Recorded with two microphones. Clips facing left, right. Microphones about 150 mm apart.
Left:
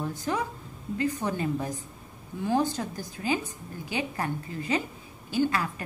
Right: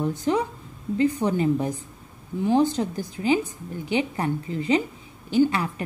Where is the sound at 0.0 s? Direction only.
20° right (ahead or behind).